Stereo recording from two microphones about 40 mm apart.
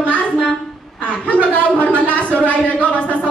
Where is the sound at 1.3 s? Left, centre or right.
Left.